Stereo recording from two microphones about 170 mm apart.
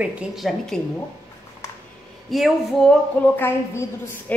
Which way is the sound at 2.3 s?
Centre (ahead or behind).